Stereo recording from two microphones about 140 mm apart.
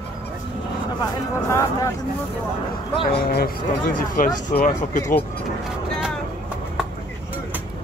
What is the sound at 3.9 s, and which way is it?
Speech, 80° left.